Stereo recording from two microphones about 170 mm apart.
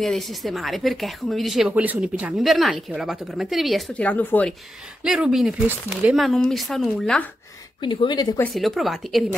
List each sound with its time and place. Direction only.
0.0 s speech: centre (ahead or behind)
5.0 s speech: 5° right (ahead or behind)
6.1 s speech: centre (ahead or behind)
7.8 s speech: 25° left (ahead or behind)
8.5 s speech: centre (ahead or behind)